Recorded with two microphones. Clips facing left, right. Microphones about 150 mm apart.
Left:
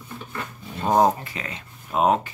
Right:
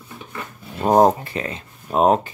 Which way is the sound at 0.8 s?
40° right (ahead or behind).